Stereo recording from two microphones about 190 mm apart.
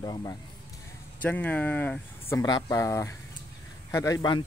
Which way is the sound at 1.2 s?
10° left (ahead or behind).